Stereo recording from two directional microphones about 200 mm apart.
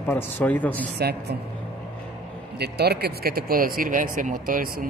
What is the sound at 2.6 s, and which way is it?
A man's voice, 55° right (ahead or behind).